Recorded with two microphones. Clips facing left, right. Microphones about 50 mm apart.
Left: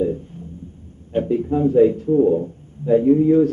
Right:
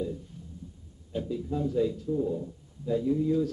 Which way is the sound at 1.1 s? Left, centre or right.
Left.